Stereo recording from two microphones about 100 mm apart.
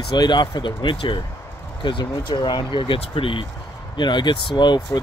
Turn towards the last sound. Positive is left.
turn(degrees=50)  # may be behind; listen again after turning